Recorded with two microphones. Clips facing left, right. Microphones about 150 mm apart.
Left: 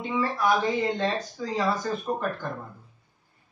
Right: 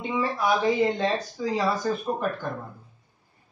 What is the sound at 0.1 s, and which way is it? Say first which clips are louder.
Speech: even; 15° right (ahead or behind).